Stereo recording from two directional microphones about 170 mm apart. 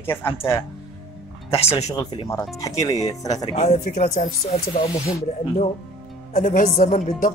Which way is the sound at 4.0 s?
50° left (ahead or behind).